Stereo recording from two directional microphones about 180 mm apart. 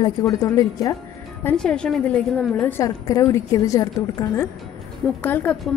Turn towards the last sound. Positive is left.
turn(degrees=10)  # may be behind; listen again after turning